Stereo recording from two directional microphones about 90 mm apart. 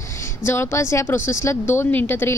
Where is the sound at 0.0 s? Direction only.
30° left (ahead or behind).